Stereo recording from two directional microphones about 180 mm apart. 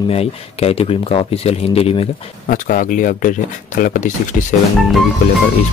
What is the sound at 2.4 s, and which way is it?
Speech, 50° left (ahead or behind).